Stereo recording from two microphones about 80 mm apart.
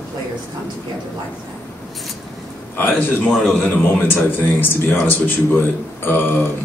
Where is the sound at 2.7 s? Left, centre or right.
Left.